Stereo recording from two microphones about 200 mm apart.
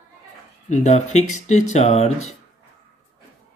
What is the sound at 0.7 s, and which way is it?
Speech, 35° left (ahead or behind).